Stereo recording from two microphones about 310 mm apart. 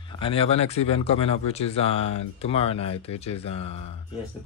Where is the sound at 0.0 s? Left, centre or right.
Centre.